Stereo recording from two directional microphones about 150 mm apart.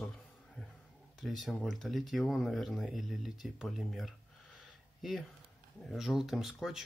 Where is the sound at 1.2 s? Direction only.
Centre (ahead or behind).